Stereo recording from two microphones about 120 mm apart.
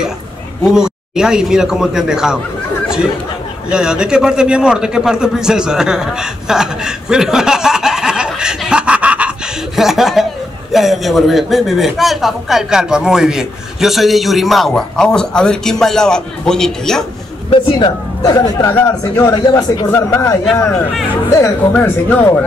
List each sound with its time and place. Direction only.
0.7 s a man's voice: 5° right (ahead or behind)
3.7 s a man's voice: 5° right (ahead or behind)
17.5 s a man's voice: 40° left (ahead or behind); by 20.3 s 20° left (ahead or behind)
20.6 s speech: 10° left (ahead or behind)